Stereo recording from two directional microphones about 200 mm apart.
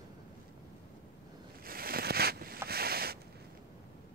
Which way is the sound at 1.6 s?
50° right (ahead or behind).